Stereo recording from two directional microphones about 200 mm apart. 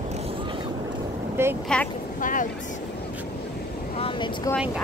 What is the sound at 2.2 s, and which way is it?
Vehicle, 40° left (ahead or behind).